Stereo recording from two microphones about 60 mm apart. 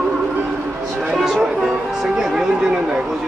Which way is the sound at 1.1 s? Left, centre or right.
Centre.